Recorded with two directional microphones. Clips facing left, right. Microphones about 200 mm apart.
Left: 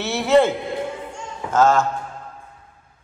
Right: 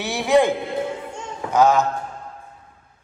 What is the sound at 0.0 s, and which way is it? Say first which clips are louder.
A man's voice: left 1 dB; 15° right (ahead or behind).